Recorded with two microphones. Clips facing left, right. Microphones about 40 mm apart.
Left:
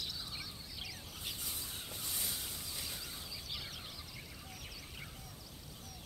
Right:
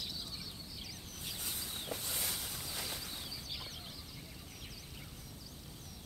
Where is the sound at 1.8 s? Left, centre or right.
Right.